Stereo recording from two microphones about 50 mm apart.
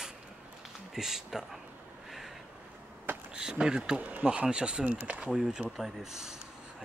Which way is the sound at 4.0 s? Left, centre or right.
Right.